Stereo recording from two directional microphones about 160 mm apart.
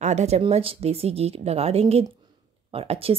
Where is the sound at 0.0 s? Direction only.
45° right (ahead or behind).